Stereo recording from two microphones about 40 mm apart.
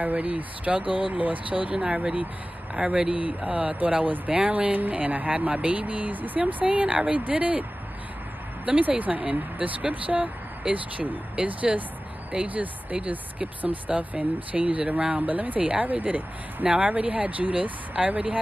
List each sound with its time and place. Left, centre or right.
0.0 s speech: right
1.8 s speech: centre
2.7 s speech: right
8.6 s speech: right
13.8 s speech: right
15.1 s speech: right